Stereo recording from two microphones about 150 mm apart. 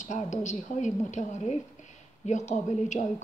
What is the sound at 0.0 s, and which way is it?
A woman's voice, 55° left (ahead or behind).